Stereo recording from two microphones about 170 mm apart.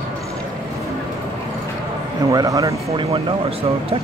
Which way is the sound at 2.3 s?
20° right (ahead or behind).